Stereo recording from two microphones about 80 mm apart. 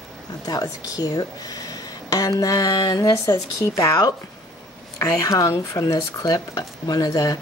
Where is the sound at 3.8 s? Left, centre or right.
Left.